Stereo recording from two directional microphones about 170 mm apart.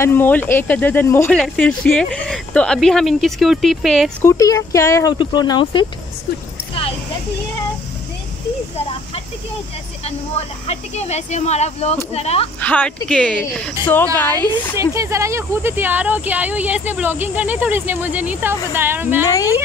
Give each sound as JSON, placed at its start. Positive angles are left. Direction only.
{"t": 0.0, "sound": "speech", "side_deg": 10}
{"t": 4.2, "sound": "speech", "side_deg": 20}
{"t": 10.7, "sound": "speech", "side_deg": 40}
{"t": 12.5, "sound": "speech", "side_deg": 10}
{"t": 14.8, "sound": "speech", "side_deg": -15}
{"t": 19.2, "sound": "speech", "side_deg": 20}